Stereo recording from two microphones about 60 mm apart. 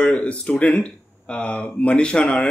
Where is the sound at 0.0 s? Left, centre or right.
Left.